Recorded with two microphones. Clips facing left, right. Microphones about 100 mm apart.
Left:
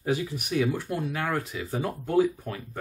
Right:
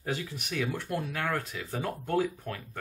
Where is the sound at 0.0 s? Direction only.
10° left (ahead or behind).